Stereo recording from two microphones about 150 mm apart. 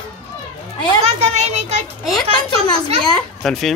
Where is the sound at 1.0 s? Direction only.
45° right (ahead or behind).